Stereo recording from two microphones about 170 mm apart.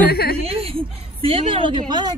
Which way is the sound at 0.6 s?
35° right (ahead or behind).